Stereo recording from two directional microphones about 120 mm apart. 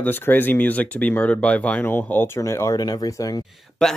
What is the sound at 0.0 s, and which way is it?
Speech, 15° left (ahead or behind).